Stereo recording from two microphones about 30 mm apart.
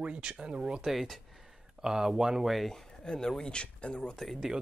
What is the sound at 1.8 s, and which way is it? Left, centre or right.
Speech, right.